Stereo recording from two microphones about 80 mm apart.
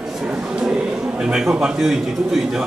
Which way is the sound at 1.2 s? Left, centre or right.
Centre.